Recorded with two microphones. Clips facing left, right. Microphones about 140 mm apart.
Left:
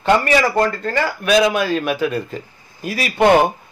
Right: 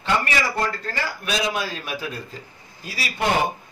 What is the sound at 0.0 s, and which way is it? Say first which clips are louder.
A man's voice: left 8 dB; 55° left (ahead or behind).